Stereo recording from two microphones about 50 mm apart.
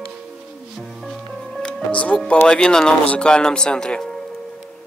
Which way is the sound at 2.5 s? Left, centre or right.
Centre.